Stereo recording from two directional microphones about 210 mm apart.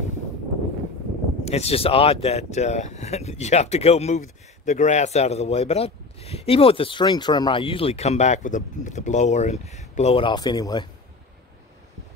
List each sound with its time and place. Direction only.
1.4 s speech: 30° left (ahead or behind)